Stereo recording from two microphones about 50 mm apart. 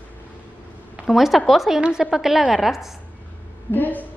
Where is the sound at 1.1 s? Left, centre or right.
Centre.